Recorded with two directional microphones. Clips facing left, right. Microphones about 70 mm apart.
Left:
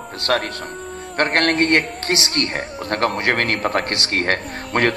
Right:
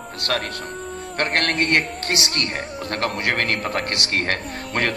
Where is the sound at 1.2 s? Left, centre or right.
Left.